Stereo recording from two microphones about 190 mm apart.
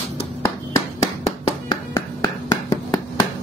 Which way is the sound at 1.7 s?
20° left (ahead or behind).